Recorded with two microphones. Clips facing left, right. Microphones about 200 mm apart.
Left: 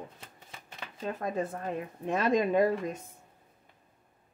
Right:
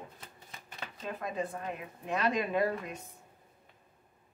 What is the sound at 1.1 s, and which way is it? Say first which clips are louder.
Speech: left 3 dB; 45° left (ahead or behind).